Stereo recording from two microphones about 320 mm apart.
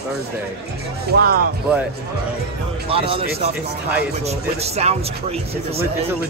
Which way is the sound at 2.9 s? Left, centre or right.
Centre.